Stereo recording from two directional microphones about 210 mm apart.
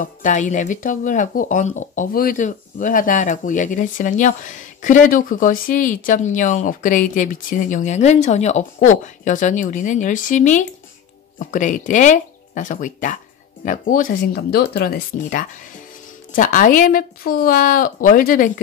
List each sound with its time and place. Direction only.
0.0 s speech: 40° left (ahead or behind)